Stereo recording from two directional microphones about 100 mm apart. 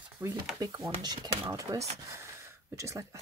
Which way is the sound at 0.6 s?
40° right (ahead or behind).